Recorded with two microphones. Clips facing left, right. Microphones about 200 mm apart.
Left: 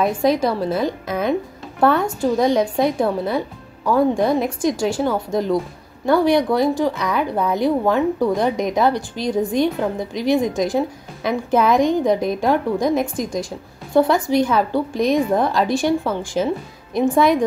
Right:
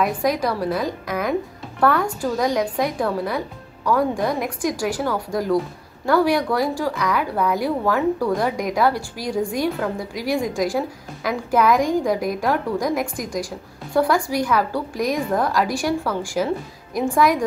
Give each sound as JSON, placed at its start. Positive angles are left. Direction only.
{"t": 0.0, "sound": "speech", "side_deg": 25}